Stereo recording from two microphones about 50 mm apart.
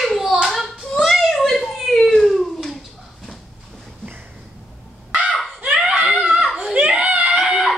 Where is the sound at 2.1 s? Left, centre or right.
Centre.